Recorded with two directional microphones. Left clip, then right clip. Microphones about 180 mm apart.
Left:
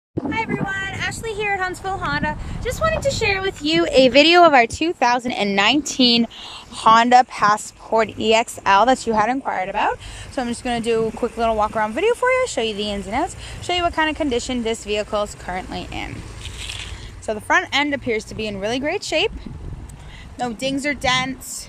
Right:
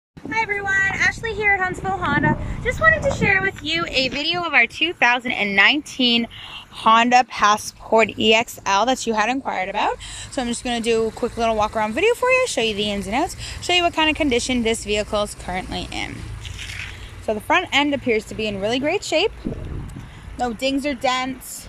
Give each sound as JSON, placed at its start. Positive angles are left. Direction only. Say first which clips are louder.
{"t": 0.3, "sound": "child singing", "louder": "right 4 dB", "side_deg": 5}
{"t": 1.4, "sound": "a woman's voice", "louder": "right 3 dB", "side_deg": 5}
{"t": 3.6, "sound": "speech", "louder": "left 6 dB", "side_deg": 35}
{"t": 4.1, "sound": "speech", "louder": "left 12 dB", "side_deg": 60}
{"t": 4.5, "sound": "speech", "louder": "left 3 dB", "side_deg": 30}
{"t": 6.8, "sound": "a woman's voice", "louder": "left 2 dB", "side_deg": 5}
{"t": 17.3, "sound": "a woman's voice", "louder": "even", "side_deg": -5}
{"t": 20.3, "sound": "a woman's voice", "louder": "right 2 dB", "side_deg": 0}